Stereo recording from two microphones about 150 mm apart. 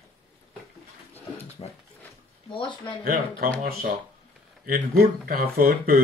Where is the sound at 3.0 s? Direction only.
70° right (ahead or behind).